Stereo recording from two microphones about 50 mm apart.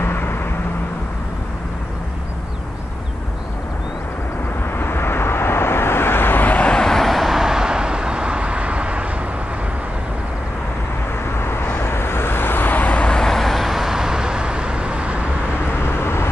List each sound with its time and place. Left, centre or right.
0.0 s vehicle: left
4.7 s vehicle: left
6.7 s vehicle: centre; by 9.0 s right
11.3 s vehicle: left
13.1 s vehicle: centre; by 15.2 s right
15.7 s vehicle: left